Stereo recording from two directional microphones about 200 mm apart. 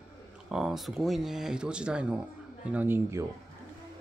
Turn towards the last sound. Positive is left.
turn(degrees=-10)  # may be behind; listen again after turning